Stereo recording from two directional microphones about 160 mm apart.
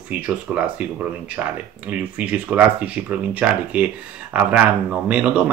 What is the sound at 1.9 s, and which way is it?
Speech, 10° right (ahead or behind).